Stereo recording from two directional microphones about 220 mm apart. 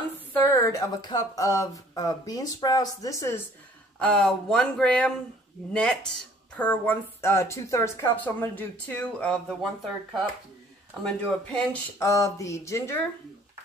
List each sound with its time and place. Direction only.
0.3 s a woman's voice: 15° left (ahead or behind)
11.1 s speech: 5° left (ahead or behind)
12.0 s a woman's voice: 15° left (ahead or behind)